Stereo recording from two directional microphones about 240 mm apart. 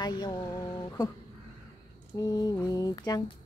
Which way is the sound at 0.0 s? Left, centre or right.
Centre.